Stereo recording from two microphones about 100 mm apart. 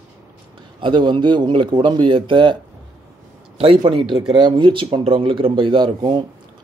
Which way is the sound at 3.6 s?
65° right (ahead or behind).